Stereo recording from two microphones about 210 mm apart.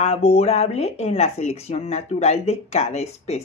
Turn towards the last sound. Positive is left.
turn(degrees=30)  # may be behind; listen again after turning